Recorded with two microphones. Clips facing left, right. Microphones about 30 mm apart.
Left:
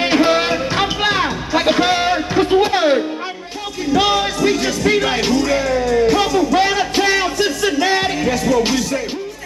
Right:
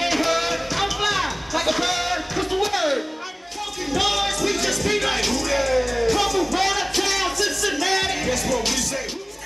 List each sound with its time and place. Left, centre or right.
0.0 s music: left
3.9 s music: centre